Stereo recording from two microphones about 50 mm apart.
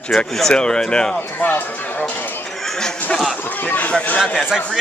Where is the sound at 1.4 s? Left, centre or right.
Left.